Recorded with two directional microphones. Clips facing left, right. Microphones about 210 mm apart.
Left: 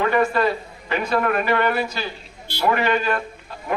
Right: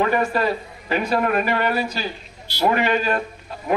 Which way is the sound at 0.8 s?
40° right (ahead or behind).